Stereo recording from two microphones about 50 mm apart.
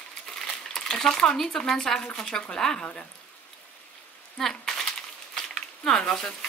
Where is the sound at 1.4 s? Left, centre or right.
Centre.